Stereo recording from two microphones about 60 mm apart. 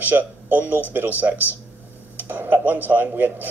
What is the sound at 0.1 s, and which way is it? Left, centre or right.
Speech, right.